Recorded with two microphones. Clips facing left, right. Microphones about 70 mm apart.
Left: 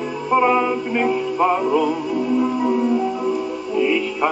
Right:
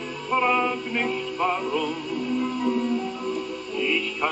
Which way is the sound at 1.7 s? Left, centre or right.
Centre.